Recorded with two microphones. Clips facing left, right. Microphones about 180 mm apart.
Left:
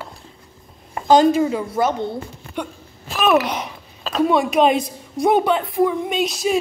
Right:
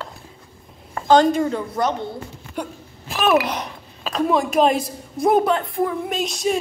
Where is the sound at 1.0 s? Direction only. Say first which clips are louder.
Left 2 dB; 10° left (ahead or behind).